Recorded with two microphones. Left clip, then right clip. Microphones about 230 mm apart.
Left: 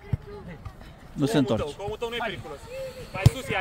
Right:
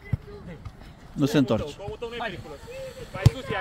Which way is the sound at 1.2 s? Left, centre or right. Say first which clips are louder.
Right 1 dB; centre.